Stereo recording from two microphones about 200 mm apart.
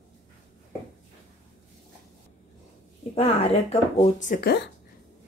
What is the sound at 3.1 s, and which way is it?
Speech, 30° left (ahead or behind).